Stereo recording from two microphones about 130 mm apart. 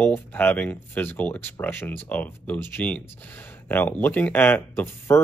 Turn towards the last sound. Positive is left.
turn(degrees=15)  # may be behind; listen again after turning